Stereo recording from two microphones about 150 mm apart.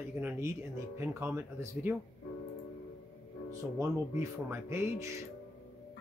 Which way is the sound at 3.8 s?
15° right (ahead or behind).